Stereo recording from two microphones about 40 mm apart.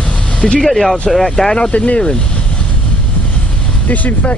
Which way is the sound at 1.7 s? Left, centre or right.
Left.